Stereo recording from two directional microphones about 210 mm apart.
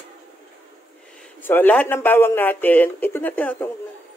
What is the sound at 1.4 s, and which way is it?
Speech, 10° left (ahead or behind).